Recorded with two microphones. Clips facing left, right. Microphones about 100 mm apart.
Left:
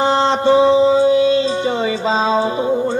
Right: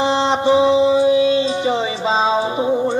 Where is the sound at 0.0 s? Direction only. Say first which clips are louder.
Left 2 dB; 40° left (ahead or behind).